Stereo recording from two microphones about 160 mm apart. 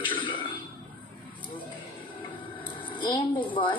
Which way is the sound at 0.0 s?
30° left (ahead or behind).